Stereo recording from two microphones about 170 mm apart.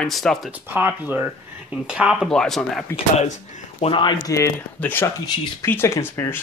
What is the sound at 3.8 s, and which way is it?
Speech, 30° left (ahead or behind).